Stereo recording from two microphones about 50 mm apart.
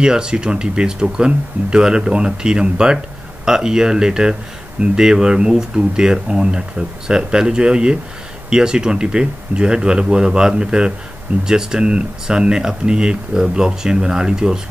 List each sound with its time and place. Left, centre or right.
0.0 s speech: centre